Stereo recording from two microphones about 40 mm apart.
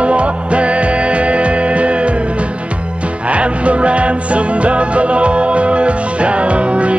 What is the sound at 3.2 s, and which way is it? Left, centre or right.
Music, right.